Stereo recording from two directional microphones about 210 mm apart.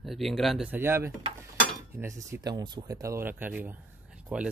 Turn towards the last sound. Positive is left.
turn(degrees=-5)  # may be behind; listen again after turning